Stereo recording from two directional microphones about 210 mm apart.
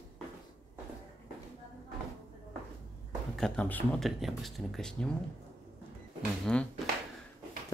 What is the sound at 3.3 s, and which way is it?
Speech, 5° left (ahead or behind).